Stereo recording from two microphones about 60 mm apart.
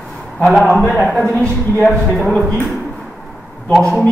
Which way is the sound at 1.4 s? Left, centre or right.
Left.